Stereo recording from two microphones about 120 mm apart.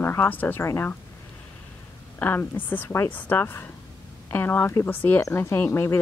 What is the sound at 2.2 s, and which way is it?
A woman's voice, 15° left (ahead or behind).